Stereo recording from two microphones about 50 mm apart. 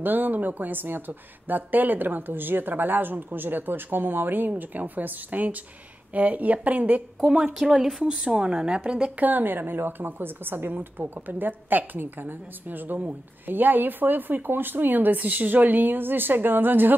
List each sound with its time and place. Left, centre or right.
0.0 s a woman's voice: right
7.2 s a woman's voice: centre
9.2 s a woman's voice: right